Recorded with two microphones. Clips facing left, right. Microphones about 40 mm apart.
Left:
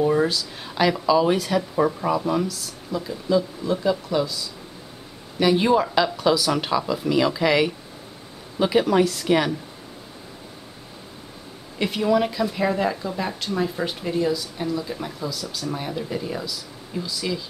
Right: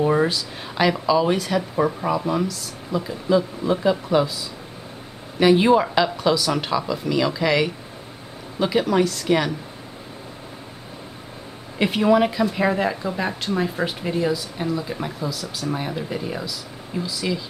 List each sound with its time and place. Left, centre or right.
0.0 s speech: centre
0.3 s speech: centre
3.0 s speech: centre
11.8 s speech: centre